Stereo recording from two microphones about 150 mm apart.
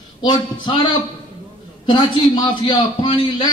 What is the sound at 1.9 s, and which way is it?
A man's voice, 30° left (ahead or behind).